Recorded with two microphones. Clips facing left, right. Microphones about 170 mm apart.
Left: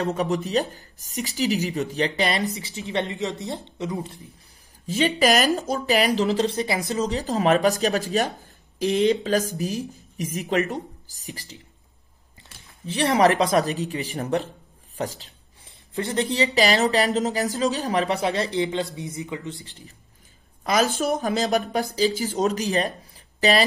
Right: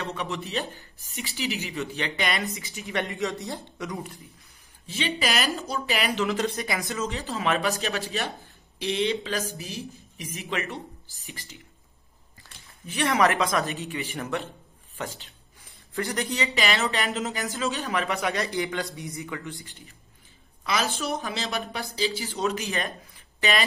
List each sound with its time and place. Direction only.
0.0 s speech: 40° left (ahead or behind); by 4.2 s 25° left (ahead or behind)
4.8 s speech: 40° left (ahead or behind)
12.4 s a sound: 20° left (ahead or behind)
12.8 s speech: 35° left (ahead or behind)
15.0 s writing: 35° left (ahead or behind)
15.9 s a man's voice: 25° left (ahead or behind)
20.6 s a woman's voice: 45° left (ahead or behind)